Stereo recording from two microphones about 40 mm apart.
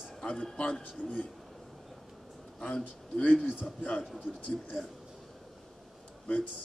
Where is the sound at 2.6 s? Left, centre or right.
Left.